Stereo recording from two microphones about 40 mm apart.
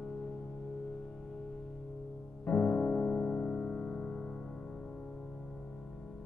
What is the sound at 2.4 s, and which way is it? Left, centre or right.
Music, left.